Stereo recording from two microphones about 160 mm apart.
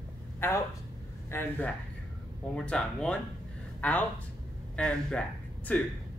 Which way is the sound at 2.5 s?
5° left (ahead or behind).